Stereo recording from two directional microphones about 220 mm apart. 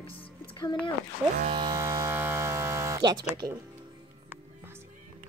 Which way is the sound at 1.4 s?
25° right (ahead or behind).